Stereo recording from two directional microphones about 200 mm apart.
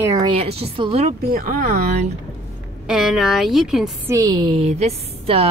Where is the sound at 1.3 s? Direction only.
45° right (ahead or behind).